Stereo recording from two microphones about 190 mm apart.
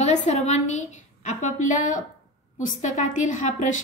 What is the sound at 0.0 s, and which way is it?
A woman's voice, 35° left (ahead or behind).